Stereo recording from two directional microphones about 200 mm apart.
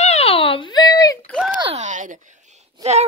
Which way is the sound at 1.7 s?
40° right (ahead or behind).